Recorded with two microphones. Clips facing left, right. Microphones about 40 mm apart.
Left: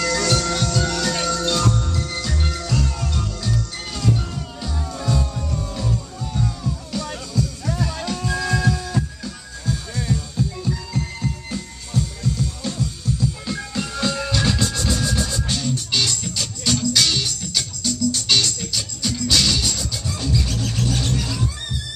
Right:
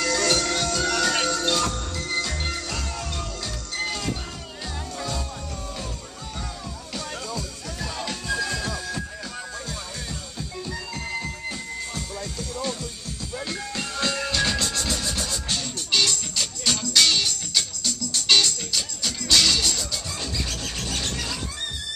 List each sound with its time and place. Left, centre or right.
0.0 s music: centre
10.7 s music: centre
13.5 s music: centre